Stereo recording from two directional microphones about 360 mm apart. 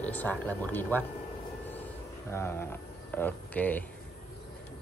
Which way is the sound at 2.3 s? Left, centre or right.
Centre.